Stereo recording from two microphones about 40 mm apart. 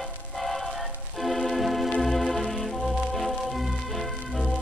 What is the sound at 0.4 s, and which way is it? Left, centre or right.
Music, centre.